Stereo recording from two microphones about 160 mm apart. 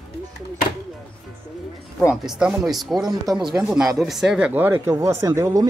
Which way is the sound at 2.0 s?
5° right (ahead or behind).